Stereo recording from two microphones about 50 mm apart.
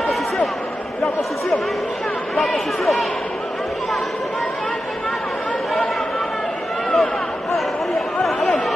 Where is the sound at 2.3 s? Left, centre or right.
Centre.